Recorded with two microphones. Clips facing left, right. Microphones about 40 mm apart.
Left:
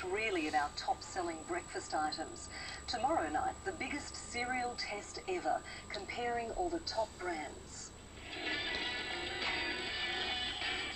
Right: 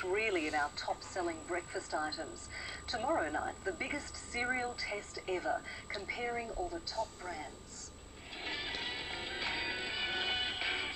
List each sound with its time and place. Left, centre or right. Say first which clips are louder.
0.0 s a woman's voice: right 2 dB; centre
4.7 s a woman's voice: right 2 dB; right
5.9 s speech: even; centre
7.0 s speech: left 1 dB; centre
8.4 s music: left 2 dB; centre